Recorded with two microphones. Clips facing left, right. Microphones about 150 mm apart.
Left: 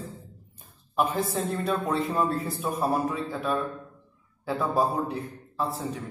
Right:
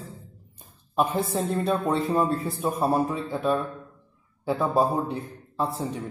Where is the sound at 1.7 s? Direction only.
25° right (ahead or behind).